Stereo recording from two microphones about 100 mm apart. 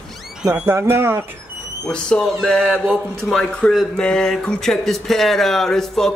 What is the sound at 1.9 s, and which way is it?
Speech, 5° left (ahead or behind).